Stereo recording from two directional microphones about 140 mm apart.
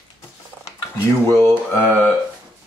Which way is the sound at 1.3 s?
15° left (ahead or behind).